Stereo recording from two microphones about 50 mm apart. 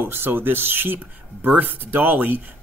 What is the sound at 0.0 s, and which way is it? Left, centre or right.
Speech, right.